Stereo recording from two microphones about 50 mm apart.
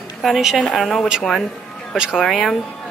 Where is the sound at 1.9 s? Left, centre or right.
Centre.